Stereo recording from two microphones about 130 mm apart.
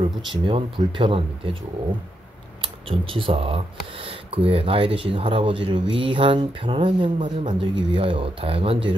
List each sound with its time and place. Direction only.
0.3 s speech: 40° right (ahead or behind)
2.6 s speech: 45° right (ahead or behind)